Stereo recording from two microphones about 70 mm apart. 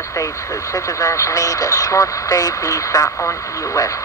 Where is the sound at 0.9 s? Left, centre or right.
Left.